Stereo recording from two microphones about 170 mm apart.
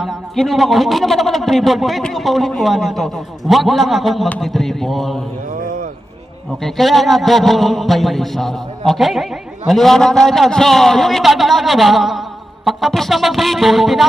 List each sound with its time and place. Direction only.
0.0 s a man's voice: centre (ahead or behind)
6.6 s a man's voice: centre (ahead or behind)